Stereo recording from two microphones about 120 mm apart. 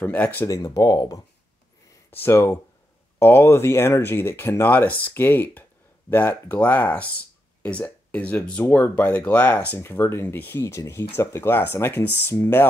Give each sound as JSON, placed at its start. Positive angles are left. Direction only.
{"t": 0.0, "sound": "speech", "side_deg": 15}
{"t": 0.5, "sound": "speech", "side_deg": 30}
{"t": 2.0, "sound": "speech", "side_deg": 20}